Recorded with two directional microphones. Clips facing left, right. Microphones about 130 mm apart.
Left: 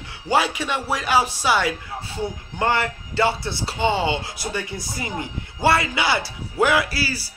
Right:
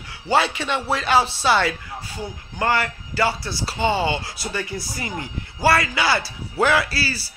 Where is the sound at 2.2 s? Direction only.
25° left (ahead or behind).